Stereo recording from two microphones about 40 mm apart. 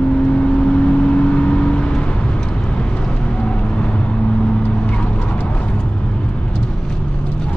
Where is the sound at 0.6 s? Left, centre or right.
Left.